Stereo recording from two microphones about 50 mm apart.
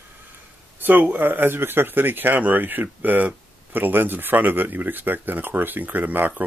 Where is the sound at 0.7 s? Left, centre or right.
Right.